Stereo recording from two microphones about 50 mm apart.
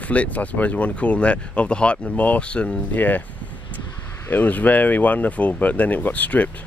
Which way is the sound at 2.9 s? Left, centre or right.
Left.